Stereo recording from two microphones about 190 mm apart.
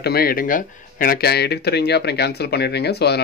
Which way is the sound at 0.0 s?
55° left (ahead or behind).